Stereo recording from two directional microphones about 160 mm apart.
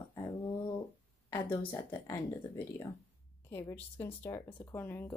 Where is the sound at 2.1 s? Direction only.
20° left (ahead or behind).